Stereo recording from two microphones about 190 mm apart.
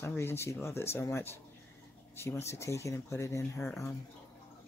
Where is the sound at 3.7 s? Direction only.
Centre (ahead or behind).